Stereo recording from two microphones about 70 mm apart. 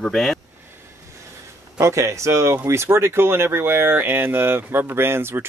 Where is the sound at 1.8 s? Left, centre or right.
Right.